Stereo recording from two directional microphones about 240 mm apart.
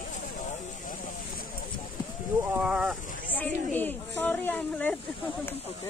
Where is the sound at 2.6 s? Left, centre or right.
Centre.